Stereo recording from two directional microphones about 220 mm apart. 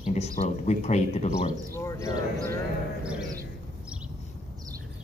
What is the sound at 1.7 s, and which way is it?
Speech, 10° left (ahead or behind).